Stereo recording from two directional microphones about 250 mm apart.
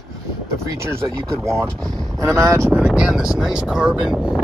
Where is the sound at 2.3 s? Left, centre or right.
Centre.